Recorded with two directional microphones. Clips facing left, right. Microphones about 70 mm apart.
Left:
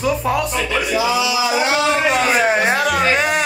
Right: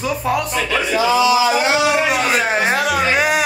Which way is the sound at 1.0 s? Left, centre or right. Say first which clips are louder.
Right 6 dB; right.